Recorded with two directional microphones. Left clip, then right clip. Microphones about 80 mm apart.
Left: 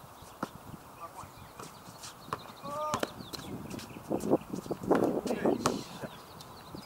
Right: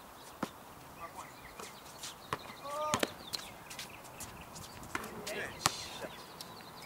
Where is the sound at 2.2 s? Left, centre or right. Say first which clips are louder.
Left 2 dB; centre.